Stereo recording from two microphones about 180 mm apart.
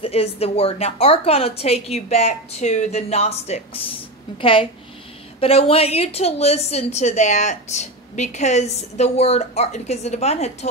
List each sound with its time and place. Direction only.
0.0 s a woman's voice: 35° left (ahead or behind)